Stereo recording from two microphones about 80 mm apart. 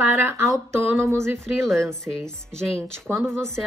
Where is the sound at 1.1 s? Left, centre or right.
Centre.